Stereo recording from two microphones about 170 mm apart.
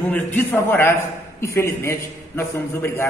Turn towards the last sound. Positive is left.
turn(degrees=15)  # may be behind; listen again after turning